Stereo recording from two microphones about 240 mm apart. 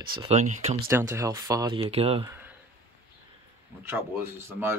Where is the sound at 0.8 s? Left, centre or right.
Centre.